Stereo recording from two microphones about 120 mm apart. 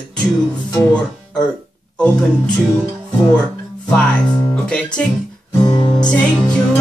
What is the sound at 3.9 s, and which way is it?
Speech, 10° left (ahead or behind).